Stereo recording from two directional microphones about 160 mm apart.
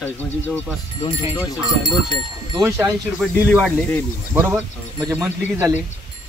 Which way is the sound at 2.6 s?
20° right (ahead or behind).